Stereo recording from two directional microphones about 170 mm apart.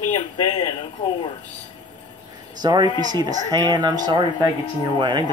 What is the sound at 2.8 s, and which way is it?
Speech, 25° left (ahead or behind).